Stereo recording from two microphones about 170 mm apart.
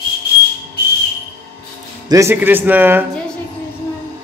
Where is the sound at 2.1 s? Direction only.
15° right (ahead or behind).